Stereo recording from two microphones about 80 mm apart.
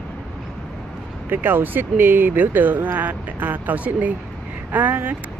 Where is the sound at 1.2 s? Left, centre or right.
Right.